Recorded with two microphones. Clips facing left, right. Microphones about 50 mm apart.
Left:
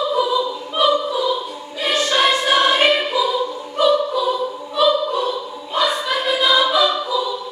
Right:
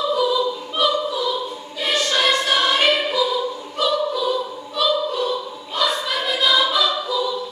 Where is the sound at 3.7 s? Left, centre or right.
Centre.